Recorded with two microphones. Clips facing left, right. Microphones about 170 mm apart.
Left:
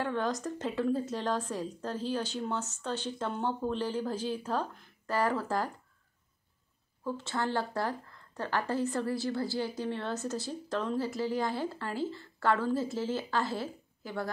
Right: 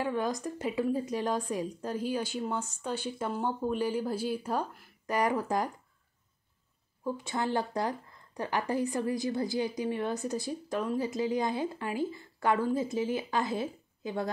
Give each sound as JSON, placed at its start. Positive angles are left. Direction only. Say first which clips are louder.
{"t": 0.0, "sound": "a woman's voice", "louder": "right 1 dB", "side_deg": -10}
{"t": 7.1, "sound": "a woman's voice", "louder": "right 1 dB", "side_deg": -15}